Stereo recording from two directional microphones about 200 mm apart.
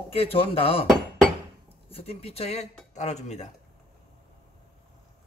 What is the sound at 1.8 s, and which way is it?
Speech, 30° left (ahead or behind).